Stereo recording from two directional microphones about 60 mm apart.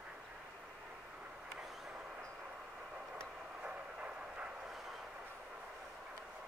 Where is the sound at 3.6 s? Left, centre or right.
Right.